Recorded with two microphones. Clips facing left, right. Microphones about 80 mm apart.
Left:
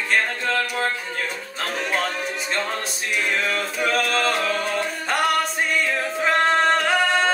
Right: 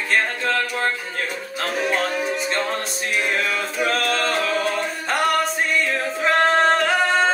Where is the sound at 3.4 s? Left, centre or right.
Centre.